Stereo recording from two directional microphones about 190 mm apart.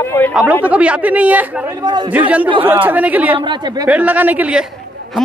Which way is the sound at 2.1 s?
10° right (ahead or behind).